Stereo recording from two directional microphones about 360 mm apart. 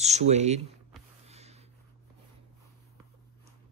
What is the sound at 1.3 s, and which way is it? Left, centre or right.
Snort, centre.